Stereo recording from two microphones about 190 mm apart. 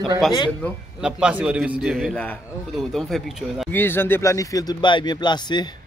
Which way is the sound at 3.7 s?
10° left (ahead or behind).